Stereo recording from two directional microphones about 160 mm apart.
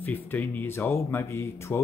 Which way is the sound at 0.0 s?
10° left (ahead or behind).